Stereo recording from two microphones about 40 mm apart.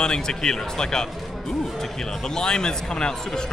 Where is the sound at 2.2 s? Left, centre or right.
Centre.